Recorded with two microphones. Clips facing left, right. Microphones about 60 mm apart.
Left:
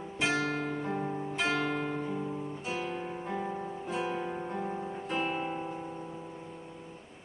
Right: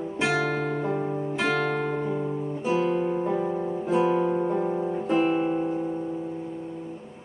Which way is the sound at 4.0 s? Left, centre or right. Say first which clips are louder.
Right 12 dB; centre.